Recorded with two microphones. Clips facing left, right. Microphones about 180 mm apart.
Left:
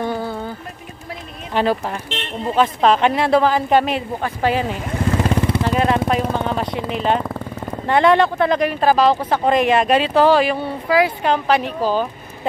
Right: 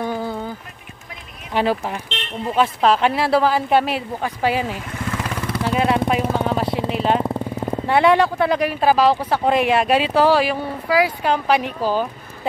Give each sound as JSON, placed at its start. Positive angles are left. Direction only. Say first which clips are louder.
{"t": 0.0, "sound": "music", "louder": "left 1 dB", "side_deg": -10}
{"t": 1.5, "sound": "speech", "louder": "left 1 dB", "side_deg": -10}
{"t": 4.9, "sound": "vehicle", "louder": "left 11 dB", "side_deg": 30}
{"t": 5.6, "sound": "vehicle", "louder": "right 3 dB", "side_deg": -10}
{"t": 6.9, "sound": "speech", "louder": "even", "side_deg": -5}